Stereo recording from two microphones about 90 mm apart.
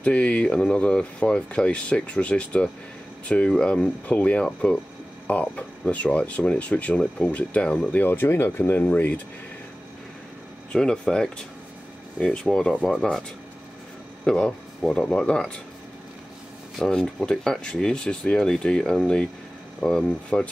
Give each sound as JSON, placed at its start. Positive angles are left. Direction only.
{"t": 0.0, "sound": "speech", "side_deg": 15}
{"t": 10.7, "sound": "speech", "side_deg": 10}
{"t": 14.2, "sound": "speech", "side_deg": 10}
{"t": 16.7, "sound": "speech", "side_deg": 10}